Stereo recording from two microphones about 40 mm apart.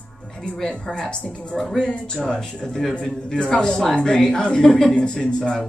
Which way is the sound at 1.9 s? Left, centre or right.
Centre.